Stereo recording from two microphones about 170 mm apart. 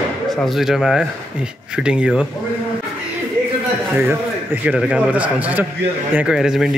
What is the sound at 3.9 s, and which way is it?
A man's voice, 10° right (ahead or behind).